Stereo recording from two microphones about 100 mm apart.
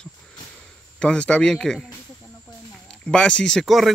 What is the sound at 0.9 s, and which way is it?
Speech, 10° left (ahead or behind).